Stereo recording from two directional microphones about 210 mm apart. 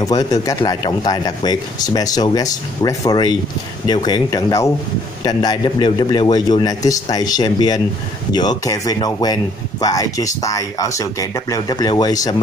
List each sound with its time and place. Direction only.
0.0 s speech: 15° left (ahead or behind)